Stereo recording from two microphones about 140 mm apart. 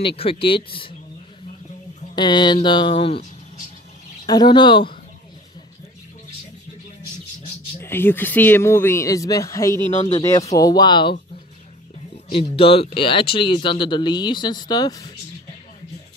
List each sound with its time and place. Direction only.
0.0 s speech: 45° left (ahead or behind)
2.1 s speech: 30° left (ahead or behind)
4.3 s speech: 30° left (ahead or behind)
7.8 s speech: 15° left (ahead or behind); by 11.1 s 35° left (ahead or behind)
12.3 s speech: 40° left (ahead or behind)